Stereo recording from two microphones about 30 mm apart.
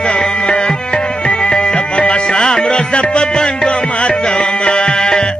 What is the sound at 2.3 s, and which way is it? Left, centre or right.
Music, left.